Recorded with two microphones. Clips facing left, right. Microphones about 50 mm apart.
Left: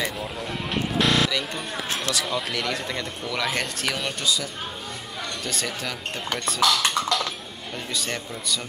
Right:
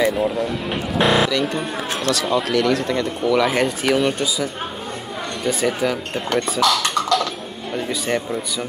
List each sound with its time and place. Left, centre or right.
0.7 s a sound: centre
1.3 s speech: centre
7.7 s speech: centre